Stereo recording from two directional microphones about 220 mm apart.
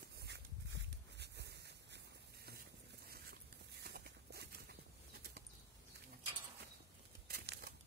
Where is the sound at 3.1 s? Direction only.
45° right (ahead or behind).